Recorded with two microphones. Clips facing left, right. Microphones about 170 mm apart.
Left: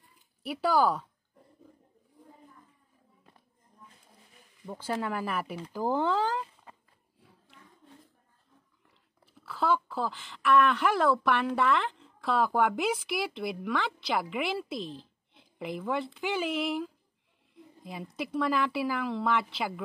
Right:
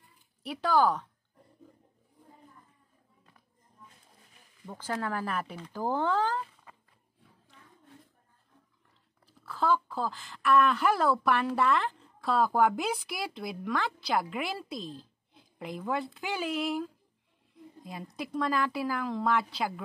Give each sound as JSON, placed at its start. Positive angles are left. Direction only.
{"t": 0.4, "sound": "speech", "side_deg": 5}
{"t": 4.6, "sound": "speech", "side_deg": 10}
{"t": 6.7, "sound": "a sound", "side_deg": 30}
{"t": 9.4, "sound": "speech", "side_deg": 5}